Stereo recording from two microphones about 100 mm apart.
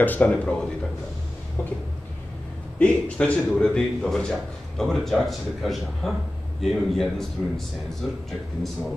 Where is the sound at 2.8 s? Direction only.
10° left (ahead or behind).